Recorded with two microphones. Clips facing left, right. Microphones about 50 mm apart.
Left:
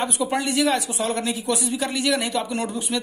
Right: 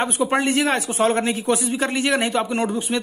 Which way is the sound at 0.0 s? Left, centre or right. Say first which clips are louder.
Right 4 dB; right.